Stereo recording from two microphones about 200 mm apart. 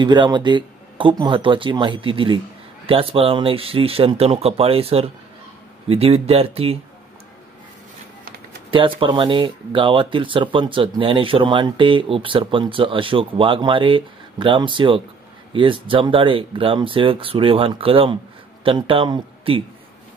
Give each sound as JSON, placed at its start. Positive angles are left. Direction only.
{"t": 0.0, "sound": "speech", "side_deg": -20}
{"t": 8.6, "sound": "speech", "side_deg": -25}